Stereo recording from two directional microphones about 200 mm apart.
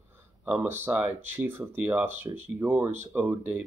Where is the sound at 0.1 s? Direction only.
10° right (ahead or behind).